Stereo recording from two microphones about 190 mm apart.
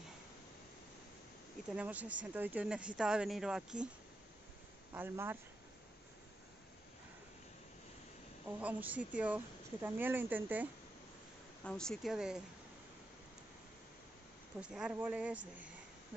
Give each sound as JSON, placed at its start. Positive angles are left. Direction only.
{"t": 1.8, "sound": "a woman's voice", "side_deg": -5}
{"t": 4.9, "sound": "a woman's voice", "side_deg": -10}
{"t": 8.5, "sound": "a woman's voice", "side_deg": -10}
{"t": 11.6, "sound": "speech", "side_deg": 5}
{"t": 14.6, "sound": "a woman's voice", "side_deg": -5}